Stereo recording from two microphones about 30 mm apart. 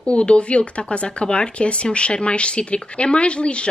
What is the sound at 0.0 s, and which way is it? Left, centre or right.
Speech, left.